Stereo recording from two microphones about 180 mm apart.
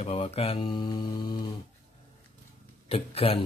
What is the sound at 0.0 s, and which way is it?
Speech, 35° left (ahead or behind).